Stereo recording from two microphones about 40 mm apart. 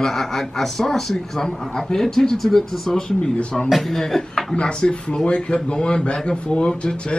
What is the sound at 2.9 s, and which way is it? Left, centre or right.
Speech, centre.